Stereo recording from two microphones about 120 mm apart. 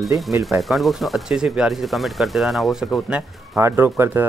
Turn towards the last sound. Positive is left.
turn(degrees=-20)  # may be behind; listen again after turning